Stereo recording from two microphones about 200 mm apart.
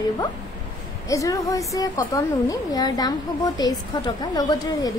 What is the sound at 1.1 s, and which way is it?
A woman's voice, 15° left (ahead or behind).